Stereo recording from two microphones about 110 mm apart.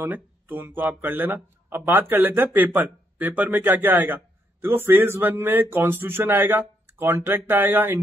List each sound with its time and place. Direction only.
0.0 s speech: 15° right (ahead or behind)